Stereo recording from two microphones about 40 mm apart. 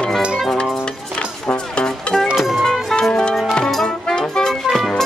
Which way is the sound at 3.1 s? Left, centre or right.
Left.